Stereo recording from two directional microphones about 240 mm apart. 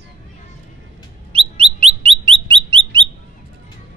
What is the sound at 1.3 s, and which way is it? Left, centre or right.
Bird, right.